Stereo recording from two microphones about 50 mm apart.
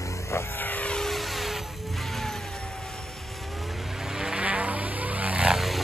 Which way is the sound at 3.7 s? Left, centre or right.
Centre.